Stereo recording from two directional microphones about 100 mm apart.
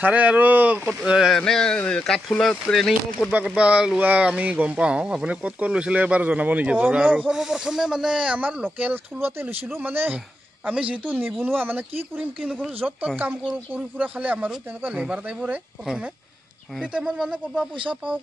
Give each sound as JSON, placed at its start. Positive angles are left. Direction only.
{"t": 0.0, "sound": "speech", "side_deg": -15}
{"t": 1.3, "sound": "speech", "side_deg": 5}
{"t": 3.3, "sound": "speech", "side_deg": -10}
{"t": 16.8, "sound": "speech", "side_deg": -10}